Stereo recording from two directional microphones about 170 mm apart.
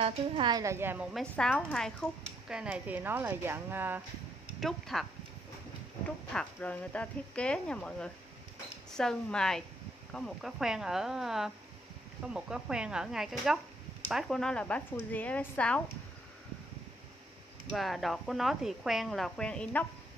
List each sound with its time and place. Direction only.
0.0 s a woman's voice: 25° right (ahead or behind)
1.1 s speech: 5° left (ahead or behind); by 4.0 s 10° right (ahead or behind)
4.6 s speech: centre (ahead or behind)
6.0 s speech: 10° left (ahead or behind)
17.6 s speech: centre (ahead or behind)